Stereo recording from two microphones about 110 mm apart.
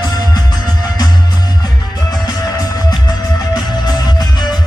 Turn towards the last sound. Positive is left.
turn(degrees=35)  # may be behind; listen again after turning